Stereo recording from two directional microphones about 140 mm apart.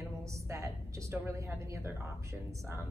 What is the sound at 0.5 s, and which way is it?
A woman's voice, 20° right (ahead or behind).